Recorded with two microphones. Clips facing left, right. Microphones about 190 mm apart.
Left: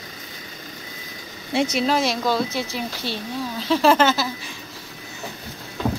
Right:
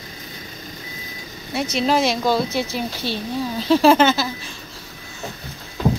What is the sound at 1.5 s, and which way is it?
Speech, 30° left (ahead or behind).